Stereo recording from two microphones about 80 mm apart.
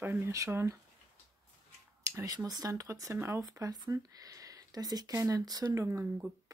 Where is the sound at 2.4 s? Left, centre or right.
Right.